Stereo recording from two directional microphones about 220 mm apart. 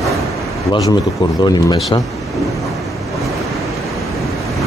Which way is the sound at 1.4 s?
20° left (ahead or behind).